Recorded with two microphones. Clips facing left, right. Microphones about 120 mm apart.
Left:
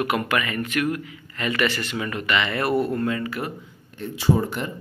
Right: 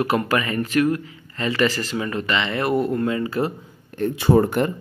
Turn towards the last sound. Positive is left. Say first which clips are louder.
# right 5 dB
turn(degrees=-55)  # may be behind; listen again after turning